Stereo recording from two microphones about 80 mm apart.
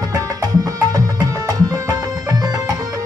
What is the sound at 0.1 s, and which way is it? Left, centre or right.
Music, right.